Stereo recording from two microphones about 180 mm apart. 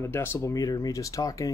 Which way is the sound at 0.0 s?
15° left (ahead or behind).